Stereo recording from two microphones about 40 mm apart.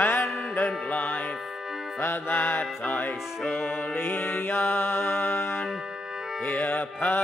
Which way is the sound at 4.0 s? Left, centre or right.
Left.